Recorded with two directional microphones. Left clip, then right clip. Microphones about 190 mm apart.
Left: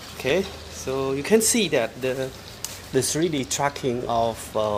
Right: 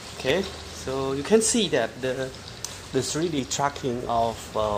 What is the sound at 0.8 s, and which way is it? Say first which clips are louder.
Speech: left 2 dB; 25° left (ahead or behind).